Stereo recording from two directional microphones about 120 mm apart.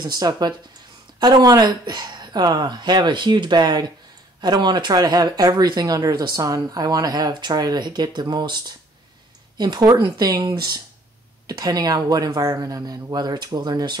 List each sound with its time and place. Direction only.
0.0 s speech: 35° right (ahead or behind)